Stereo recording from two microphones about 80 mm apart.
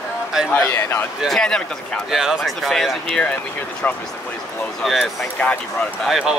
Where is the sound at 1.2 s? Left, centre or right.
Centre.